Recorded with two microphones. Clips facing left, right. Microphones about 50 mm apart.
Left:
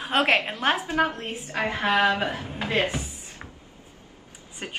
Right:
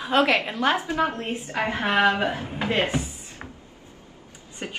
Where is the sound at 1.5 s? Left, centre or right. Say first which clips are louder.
Left 1 dB; right.